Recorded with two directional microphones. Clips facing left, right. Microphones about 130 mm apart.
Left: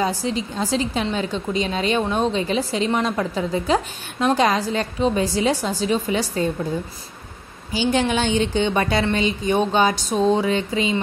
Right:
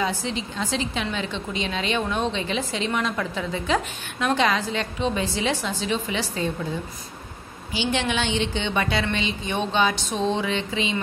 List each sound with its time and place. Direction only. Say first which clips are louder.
0.0 s a woman's voice: left 4 dB; 40° left (ahead or behind)
7.7 s a woman's voice: left 5 dB; 40° left (ahead or behind)